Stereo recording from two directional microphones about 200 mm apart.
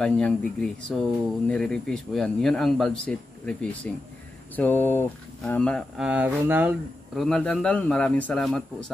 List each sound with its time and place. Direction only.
0.0 s speech: 5° left (ahead or behind)
7.2 s speech: 5° left (ahead or behind)